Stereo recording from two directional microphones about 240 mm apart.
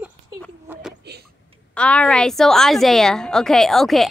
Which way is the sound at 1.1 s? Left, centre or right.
Right.